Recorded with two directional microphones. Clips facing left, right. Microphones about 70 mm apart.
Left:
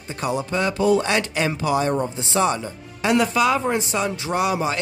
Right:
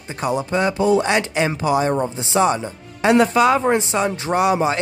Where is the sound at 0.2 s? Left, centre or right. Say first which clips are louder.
Right 3 dB; right.